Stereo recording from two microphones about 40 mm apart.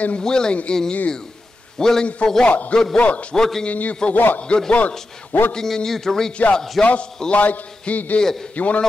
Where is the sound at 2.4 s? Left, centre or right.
Left.